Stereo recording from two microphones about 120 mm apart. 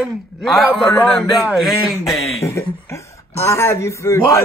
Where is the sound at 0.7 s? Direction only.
15° left (ahead or behind).